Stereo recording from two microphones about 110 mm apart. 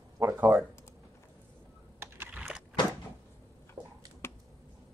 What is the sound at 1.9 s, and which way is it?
Computer keyboard, 20° right (ahead or behind).